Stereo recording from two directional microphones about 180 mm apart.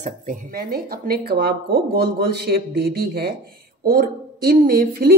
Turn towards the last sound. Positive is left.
turn(degrees=-60)  # may be behind; listen again after turning